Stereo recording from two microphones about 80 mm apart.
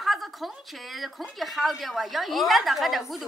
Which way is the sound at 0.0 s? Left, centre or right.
Centre.